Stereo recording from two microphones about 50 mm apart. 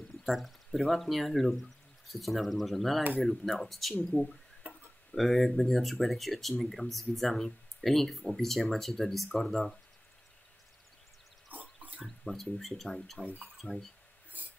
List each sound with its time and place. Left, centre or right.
0.2 s speech: centre
4.6 s tick-tock: right
5.1 s speech: centre
11.5 s a sound: right
12.0 s speech: centre
14.3 s filing: right